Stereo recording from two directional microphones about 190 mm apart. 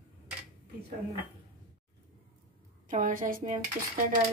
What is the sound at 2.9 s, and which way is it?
Speech, 45° right (ahead or behind).